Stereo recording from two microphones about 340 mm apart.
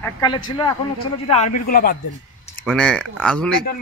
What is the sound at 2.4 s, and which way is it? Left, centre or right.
Speech, centre.